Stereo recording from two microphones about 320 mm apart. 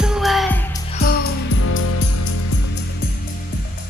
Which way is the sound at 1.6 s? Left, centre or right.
Left.